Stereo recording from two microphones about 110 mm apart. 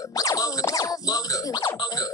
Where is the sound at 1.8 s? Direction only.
35° left (ahead or behind).